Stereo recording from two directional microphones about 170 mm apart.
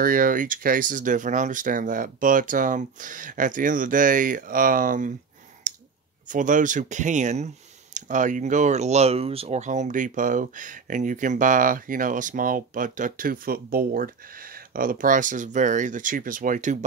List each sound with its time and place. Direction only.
0.0 s speech: 55° right (ahead or behind)
5.7 s clicking: 50° right (ahead or behind)
6.2 s speech: 50° right (ahead or behind)